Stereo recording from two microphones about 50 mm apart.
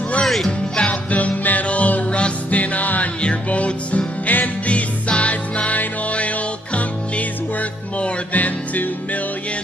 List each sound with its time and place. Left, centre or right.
0.2 s music: centre
0.5 s music: left